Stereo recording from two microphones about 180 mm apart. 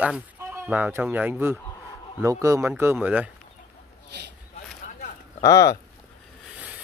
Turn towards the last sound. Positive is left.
turn(degrees=20)  # may be behind; listen again after turning